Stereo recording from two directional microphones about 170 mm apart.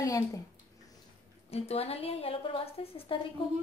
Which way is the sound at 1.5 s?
35° left (ahead or behind).